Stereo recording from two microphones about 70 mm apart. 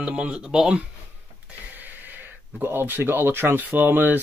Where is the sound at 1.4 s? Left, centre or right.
Right.